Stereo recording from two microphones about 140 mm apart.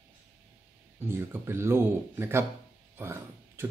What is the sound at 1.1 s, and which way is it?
Speech, 20° right (ahead or behind).